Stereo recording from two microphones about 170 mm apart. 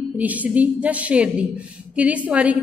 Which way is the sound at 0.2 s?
10° right (ahead or behind).